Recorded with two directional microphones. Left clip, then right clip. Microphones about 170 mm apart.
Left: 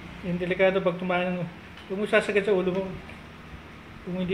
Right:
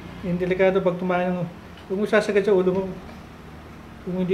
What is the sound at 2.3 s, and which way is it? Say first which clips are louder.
Speech: right 5 dB; 10° right (ahead or behind).